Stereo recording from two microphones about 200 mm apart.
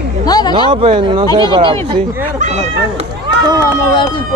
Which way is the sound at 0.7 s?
25° right (ahead or behind).